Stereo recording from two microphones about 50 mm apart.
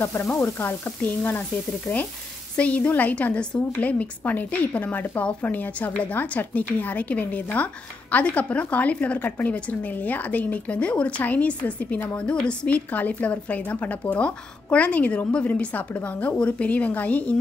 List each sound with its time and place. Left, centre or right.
0.0 s frying: left
1.0 s speech: left
1.9 s frying: left
2.5 s speech: left